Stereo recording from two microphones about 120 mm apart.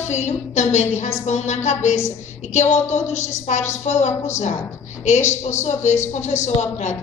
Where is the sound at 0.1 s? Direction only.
75° left (ahead or behind).